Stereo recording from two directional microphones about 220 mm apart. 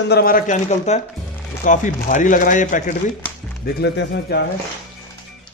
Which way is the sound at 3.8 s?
50° left (ahead or behind).